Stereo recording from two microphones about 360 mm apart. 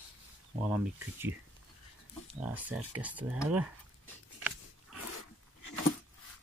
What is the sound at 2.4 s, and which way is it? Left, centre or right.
Speech, centre.